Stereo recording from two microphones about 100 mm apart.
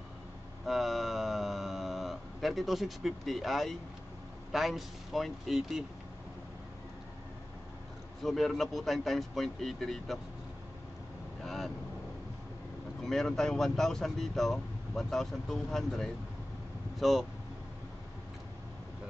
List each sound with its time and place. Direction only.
0.7 s a sound: centre (ahead or behind)
4.5 s speech: centre (ahead or behind)
8.2 s speech: 5° left (ahead or behind)
11.4 s vehicle: centre (ahead or behind)
13.0 s speech: 5° left (ahead or behind)